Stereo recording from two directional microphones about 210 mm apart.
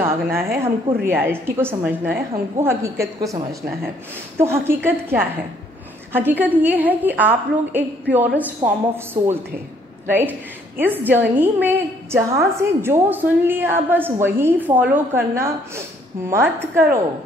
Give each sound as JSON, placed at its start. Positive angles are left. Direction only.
{"t": 0.0, "sound": "a woman's voice", "side_deg": -10}